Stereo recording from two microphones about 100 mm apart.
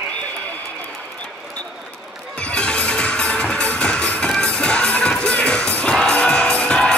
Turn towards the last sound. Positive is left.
turn(degrees=10)  # may be behind; listen again after turning